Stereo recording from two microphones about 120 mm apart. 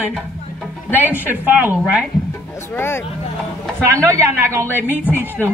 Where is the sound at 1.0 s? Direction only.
15° right (ahead or behind).